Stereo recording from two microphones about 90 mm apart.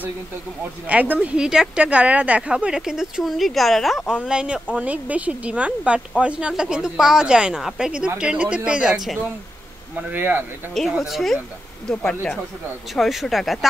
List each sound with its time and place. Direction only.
0.8 s speech: 15° right (ahead or behind); by 4.1 s centre (ahead or behind)
4.1 s speech: 10° right (ahead or behind)
9.9 s speech: 15° right (ahead or behind)
10.9 s speech: 5° right (ahead or behind)
11.9 s speech: 15° left (ahead or behind)
12.9 s speech: centre (ahead or behind)